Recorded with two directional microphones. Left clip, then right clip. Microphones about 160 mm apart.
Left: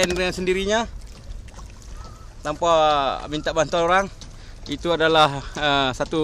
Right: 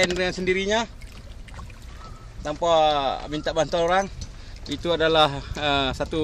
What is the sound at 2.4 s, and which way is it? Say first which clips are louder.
Speech: left 2 dB; 10° left (ahead or behind).